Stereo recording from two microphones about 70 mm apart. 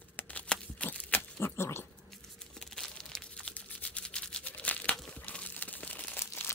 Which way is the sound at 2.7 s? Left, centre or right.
Centre.